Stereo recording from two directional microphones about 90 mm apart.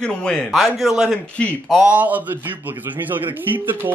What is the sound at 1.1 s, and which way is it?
Speech, 15° left (ahead or behind).